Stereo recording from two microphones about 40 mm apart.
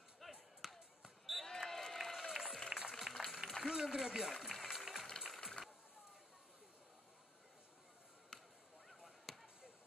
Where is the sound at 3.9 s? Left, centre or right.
Centre.